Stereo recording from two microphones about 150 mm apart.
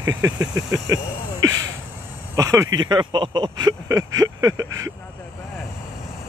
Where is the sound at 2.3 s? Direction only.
20° right (ahead or behind).